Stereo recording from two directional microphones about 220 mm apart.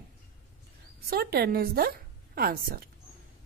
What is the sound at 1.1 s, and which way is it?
A woman's voice, 45° right (ahead or behind).